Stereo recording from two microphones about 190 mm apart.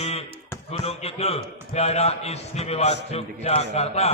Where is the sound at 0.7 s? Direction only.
35° left (ahead or behind).